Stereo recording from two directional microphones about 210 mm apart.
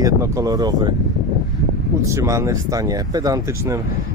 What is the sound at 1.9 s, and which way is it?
Speech, 15° right (ahead or behind).